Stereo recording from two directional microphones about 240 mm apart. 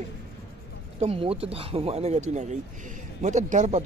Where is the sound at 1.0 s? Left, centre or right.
Right.